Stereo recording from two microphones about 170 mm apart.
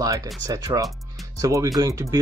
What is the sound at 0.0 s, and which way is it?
Speech, 20° right (ahead or behind).